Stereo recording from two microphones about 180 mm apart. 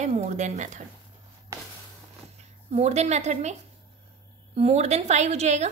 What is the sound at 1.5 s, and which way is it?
Walk, 15° right (ahead or behind).